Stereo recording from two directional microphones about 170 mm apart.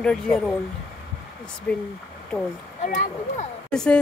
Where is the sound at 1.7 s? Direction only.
5° left (ahead or behind).